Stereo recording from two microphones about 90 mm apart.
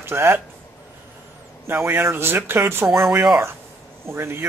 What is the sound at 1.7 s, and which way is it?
Speech, 25° right (ahead or behind).